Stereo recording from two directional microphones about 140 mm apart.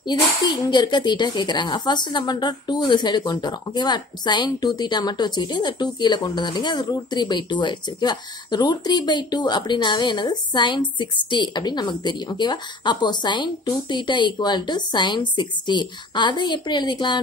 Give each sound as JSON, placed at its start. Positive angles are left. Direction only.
{"t": 0.1, "sound": "a woman's voice", "side_deg": 30}